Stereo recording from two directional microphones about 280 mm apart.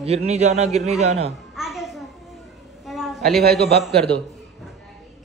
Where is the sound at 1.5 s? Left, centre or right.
Centre.